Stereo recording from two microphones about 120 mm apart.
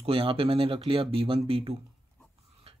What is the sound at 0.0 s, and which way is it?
Speech, 50° right (ahead or behind).